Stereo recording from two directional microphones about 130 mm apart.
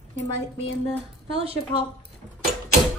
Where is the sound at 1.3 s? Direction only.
45° right (ahead or behind).